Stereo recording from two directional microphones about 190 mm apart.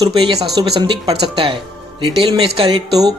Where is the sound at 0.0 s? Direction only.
25° right (ahead or behind).